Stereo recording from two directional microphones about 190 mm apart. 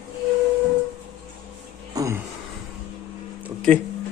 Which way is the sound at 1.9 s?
20° right (ahead or behind).